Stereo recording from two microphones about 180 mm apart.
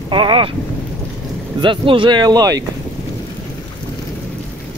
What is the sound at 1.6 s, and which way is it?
Speech, 30° right (ahead or behind).